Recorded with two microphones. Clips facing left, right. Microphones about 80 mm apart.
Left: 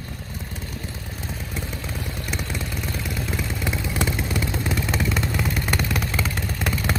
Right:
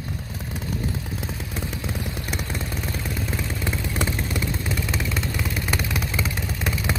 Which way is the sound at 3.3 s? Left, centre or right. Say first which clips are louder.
Left 2 dB; centre.